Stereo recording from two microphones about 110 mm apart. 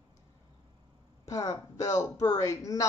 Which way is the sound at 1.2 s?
35° left (ahead or behind).